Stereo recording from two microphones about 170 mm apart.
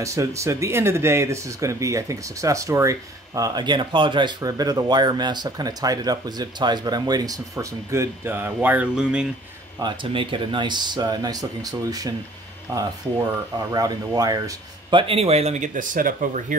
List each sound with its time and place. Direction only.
0.0 s speech: 20° right (ahead or behind)
9.8 s speech: 30° right (ahead or behind); by 16.5 s 50° right (ahead or behind)